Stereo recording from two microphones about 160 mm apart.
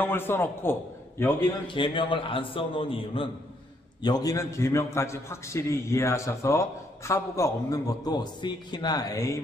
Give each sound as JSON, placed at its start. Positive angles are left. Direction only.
{"t": 0.0, "sound": "a man's voice", "side_deg": 15}
{"t": 1.7, "sound": "a man's voice", "side_deg": 30}
{"t": 4.0, "sound": "a man's voice", "side_deg": 25}